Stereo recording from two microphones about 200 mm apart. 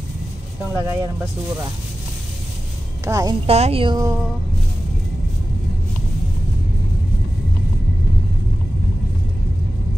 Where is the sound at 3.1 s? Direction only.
15° right (ahead or behind).